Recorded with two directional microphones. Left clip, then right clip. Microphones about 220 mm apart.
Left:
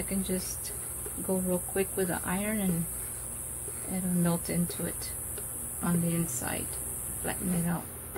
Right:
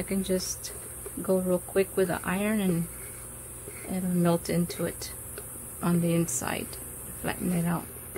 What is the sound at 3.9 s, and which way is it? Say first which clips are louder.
Speech: right 5 dB; 45° right (ahead or behind).